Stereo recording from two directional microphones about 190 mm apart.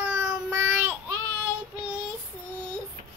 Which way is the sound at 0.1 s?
10° right (ahead or behind).